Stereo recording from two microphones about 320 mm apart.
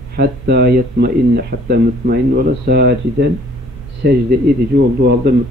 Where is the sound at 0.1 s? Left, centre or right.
Right.